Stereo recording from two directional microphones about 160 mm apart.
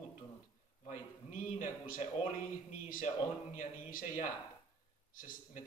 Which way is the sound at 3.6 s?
55° left (ahead or behind).